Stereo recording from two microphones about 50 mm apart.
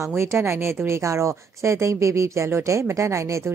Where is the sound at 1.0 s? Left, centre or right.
Right.